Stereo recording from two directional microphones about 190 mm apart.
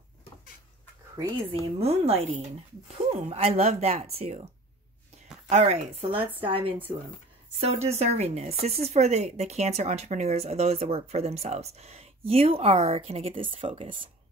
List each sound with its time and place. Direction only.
1.1 s speech: 25° right (ahead or behind)
5.5 s speech: 35° right (ahead or behind)